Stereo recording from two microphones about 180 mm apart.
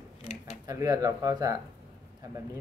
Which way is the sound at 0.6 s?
20° right (ahead or behind).